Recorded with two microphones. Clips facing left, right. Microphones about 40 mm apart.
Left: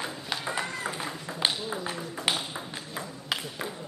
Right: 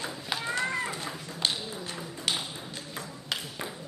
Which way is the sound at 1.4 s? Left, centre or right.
Centre.